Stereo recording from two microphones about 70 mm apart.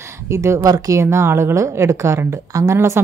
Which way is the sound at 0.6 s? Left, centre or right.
Right.